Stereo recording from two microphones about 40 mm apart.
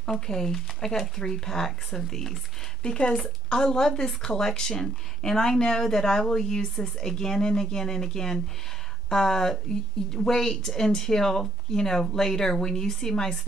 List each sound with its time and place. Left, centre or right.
0.0 s speech: centre